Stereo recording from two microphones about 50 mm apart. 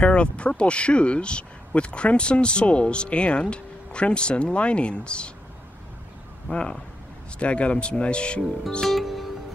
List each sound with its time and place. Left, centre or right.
0.0 s speech: left
6.5 s speech: centre
8.9 s music: centre